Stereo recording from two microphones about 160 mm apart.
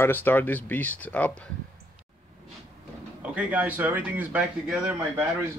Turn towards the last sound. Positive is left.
turn(degrees=-10)  # may be behind; listen again after turning